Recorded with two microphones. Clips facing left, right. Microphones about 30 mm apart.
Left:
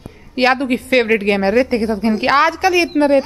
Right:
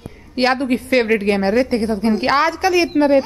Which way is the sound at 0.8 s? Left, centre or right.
Centre.